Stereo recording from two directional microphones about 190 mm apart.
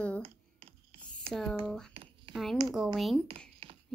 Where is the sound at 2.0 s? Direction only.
30° right (ahead or behind).